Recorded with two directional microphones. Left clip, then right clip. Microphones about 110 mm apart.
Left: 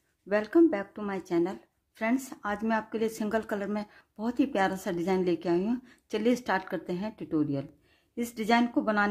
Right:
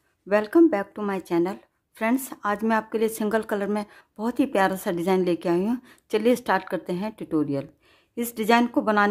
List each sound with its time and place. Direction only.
0.3 s speech: 40° right (ahead or behind)